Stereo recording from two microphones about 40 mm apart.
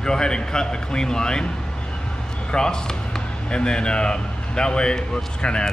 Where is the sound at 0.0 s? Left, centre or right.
Centre.